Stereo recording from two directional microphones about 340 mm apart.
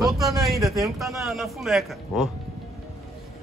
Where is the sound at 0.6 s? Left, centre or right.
Centre.